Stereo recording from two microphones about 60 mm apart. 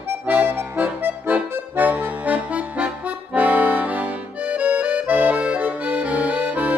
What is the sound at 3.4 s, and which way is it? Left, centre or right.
Accordion, right.